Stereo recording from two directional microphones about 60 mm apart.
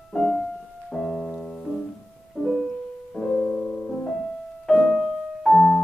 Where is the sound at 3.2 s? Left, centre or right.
Centre.